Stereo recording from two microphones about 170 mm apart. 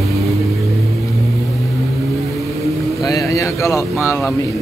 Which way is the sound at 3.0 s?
20° left (ahead or behind).